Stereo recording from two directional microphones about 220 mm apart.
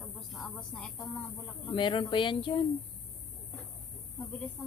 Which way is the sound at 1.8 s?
20° left (ahead or behind).